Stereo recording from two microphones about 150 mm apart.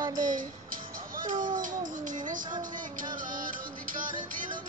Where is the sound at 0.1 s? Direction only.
65° right (ahead or behind).